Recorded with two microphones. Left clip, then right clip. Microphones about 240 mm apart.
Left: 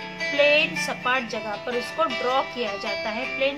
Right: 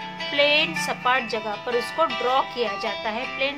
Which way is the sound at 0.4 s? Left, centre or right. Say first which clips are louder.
Even; right.